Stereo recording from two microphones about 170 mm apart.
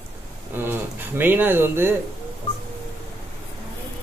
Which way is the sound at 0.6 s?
10° right (ahead or behind).